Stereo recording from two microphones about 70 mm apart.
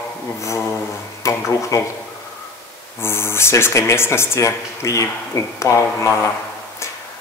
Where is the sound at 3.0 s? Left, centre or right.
Left.